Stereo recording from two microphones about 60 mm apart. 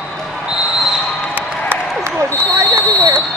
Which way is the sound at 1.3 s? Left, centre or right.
Right.